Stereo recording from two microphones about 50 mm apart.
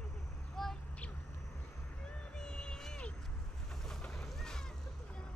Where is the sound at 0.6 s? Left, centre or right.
Centre.